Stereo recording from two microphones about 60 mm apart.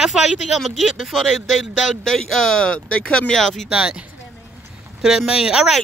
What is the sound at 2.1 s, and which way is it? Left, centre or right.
Speech, centre.